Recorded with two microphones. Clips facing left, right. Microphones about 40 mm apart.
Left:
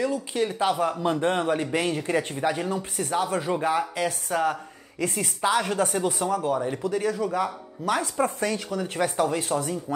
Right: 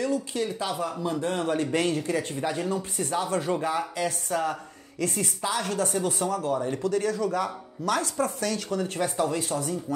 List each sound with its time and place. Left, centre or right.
0.0 s a man's voice: centre
1.5 s speech: centre
2.0 s speech: left
8.6 s speech: centre
8.9 s speech: left